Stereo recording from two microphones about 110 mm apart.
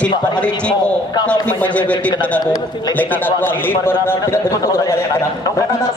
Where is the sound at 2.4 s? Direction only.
35° left (ahead or behind).